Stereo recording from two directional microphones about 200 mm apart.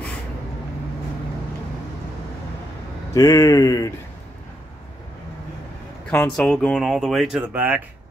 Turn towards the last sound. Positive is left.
turn(degrees=-10)  # may be behind; listen again after turning